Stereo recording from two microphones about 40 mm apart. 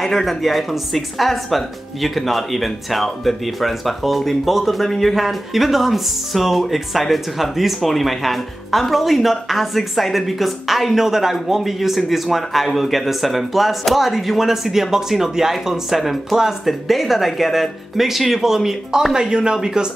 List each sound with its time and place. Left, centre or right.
0.0 s speech: centre